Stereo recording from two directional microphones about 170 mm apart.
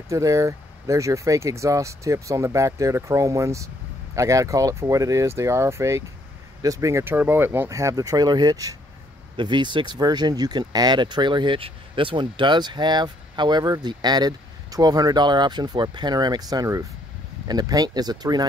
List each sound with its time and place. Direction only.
0.1 s speech: 20° right (ahead or behind)